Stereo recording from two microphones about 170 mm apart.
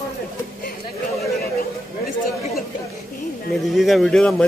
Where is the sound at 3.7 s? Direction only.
Centre (ahead or behind).